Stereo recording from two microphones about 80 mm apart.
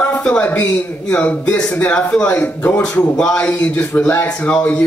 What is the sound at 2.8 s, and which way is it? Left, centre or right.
A man's voice, centre.